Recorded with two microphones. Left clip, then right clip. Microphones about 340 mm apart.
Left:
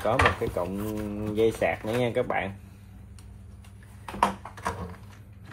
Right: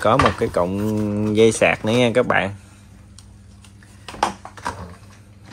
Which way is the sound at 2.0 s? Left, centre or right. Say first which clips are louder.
Right 10 dB; right.